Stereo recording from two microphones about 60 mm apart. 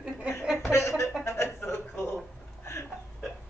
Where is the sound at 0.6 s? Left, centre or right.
Left.